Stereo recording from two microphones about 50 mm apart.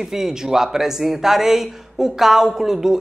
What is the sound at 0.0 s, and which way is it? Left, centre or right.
A man's voice, centre.